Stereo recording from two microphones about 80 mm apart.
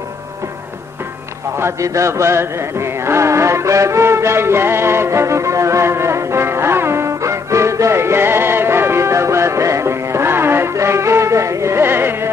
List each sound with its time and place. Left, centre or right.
1.6 s music: right